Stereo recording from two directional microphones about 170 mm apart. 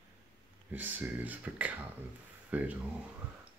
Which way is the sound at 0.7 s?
10° right (ahead or behind).